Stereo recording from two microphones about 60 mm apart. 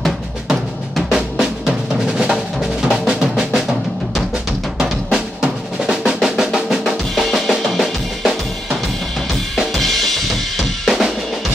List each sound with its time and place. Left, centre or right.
0.5 s music: centre
1.4 s drum: centre
4.7 s drum: centre
9.8 s drum kit: centre